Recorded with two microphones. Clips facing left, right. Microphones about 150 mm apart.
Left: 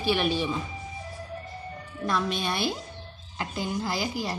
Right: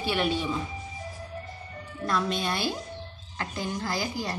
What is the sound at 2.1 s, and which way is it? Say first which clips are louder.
A woman's voice: even; 15° left (ahead or behind).